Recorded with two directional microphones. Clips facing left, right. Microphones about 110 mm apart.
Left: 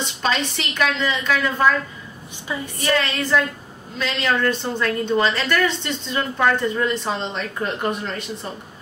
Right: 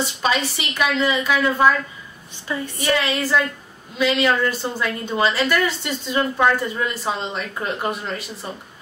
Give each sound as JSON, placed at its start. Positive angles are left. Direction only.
{"t": 0.0, "sound": "a woman's voice", "side_deg": -5}
{"t": 2.8, "sound": "a woman's voice", "side_deg": -10}